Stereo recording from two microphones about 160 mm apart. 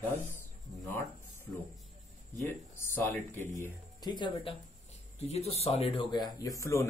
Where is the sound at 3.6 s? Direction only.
25° left (ahead or behind).